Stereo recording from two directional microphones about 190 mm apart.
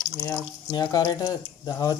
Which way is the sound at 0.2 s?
20° left (ahead or behind).